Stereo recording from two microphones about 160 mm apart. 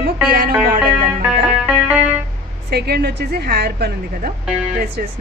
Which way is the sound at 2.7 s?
85° right.